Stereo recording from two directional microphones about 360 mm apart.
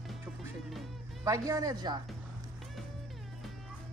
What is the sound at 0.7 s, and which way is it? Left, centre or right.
Music, centre.